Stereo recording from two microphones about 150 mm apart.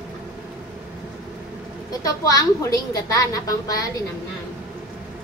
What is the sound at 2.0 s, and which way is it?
A woman's voice, 25° left (ahead or behind).